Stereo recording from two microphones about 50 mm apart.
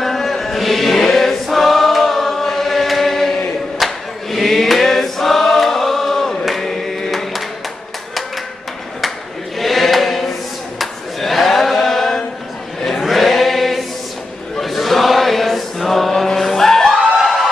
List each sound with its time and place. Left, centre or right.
0.0 s chant: centre
3.8 s choir: centre
9.6 s choir: centre
14.6 s chant: centre